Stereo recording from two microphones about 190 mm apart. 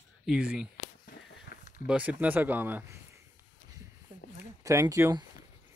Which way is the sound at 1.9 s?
5° right (ahead or behind).